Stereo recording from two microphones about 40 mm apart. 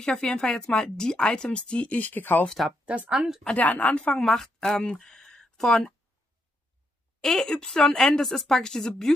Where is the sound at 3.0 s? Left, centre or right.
Centre.